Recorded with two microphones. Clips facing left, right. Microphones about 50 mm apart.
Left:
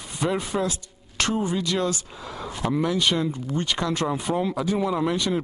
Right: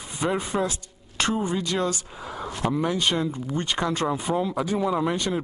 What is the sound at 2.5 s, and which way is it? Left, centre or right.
Speech, centre.